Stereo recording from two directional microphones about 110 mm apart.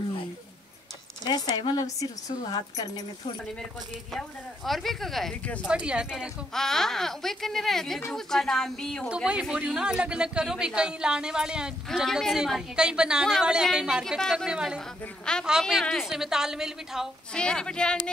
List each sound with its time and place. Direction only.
1.2 s speech: 40° left (ahead or behind)
4.1 s speech: centre (ahead or behind)
5.7 s speech: 10° right (ahead or behind)
6.5 s speech: 5° left (ahead or behind)
9.1 s speech: 10° right (ahead or behind)
15.3 s speech: 5° left (ahead or behind)
17.3 s speech: 10° left (ahead or behind)